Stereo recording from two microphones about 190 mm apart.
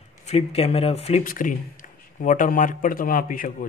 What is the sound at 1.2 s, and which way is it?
Speech, 45° left (ahead or behind).